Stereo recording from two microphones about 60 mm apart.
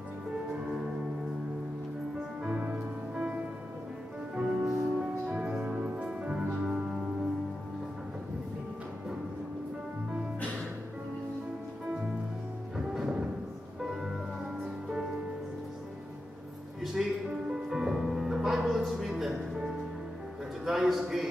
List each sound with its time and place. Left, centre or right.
2.4 s music: centre
4.4 s music: centre
5.2 s music: centre
6.5 s music: centre
12.7 s music: centre
14.6 s music: centre
16.8 s music: centre
20.6 s a sound: centre